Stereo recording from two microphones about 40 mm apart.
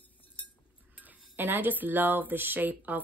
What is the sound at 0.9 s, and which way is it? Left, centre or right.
Speech, right.